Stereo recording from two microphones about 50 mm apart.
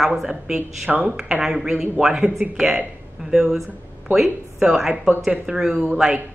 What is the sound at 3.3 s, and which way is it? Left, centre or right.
Speech, centre.